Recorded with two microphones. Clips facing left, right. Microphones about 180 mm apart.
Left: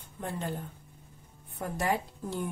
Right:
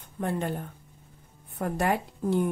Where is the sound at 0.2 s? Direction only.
60° right (ahead or behind).